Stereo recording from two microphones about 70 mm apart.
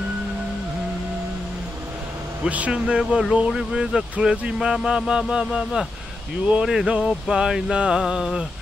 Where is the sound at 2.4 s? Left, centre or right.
Centre.